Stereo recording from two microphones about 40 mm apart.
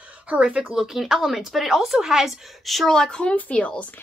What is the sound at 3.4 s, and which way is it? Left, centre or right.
Speech, left.